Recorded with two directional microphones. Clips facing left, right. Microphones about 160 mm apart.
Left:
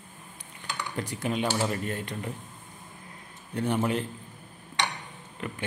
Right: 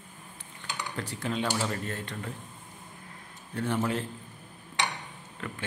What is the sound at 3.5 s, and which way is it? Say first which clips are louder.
Speech: left 2 dB; 15° left (ahead or behind).